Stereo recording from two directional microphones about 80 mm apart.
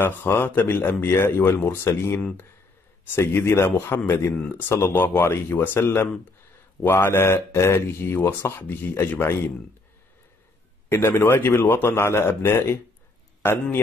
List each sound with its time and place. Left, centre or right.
0.0 s speech: left
5.8 s speech: left
10.9 s a man's voice: left